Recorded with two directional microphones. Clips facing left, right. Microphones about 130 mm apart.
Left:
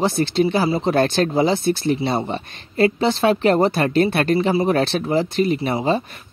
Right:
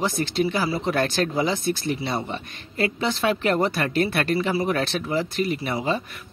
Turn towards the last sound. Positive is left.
turn(degrees=30)  # may be behind; listen again after turning